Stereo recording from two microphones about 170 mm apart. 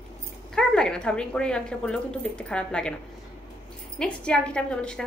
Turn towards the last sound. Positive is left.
turn(degrees=5)  # may be behind; listen again after turning